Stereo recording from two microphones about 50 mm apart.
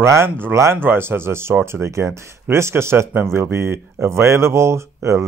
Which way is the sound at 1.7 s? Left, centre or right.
Right.